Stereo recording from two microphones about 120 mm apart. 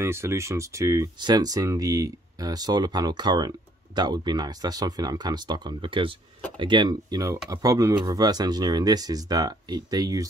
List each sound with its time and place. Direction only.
0.0 s speech: 25° right (ahead or behind)